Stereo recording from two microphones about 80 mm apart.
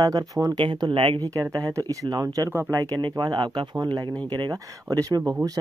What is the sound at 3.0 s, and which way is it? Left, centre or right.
Speech, right.